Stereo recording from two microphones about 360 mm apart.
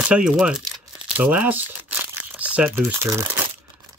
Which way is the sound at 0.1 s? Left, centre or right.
Centre.